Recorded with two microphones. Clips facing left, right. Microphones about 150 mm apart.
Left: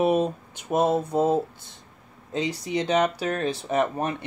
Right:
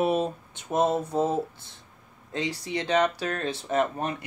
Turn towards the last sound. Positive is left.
turn(degrees=15)  # may be behind; listen again after turning